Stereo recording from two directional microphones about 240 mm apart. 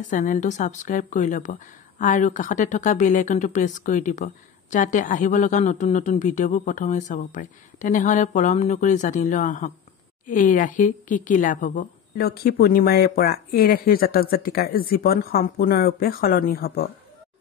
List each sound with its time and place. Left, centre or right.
0.0 s speech: left